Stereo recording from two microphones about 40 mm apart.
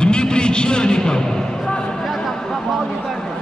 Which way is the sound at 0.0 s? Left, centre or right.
Left.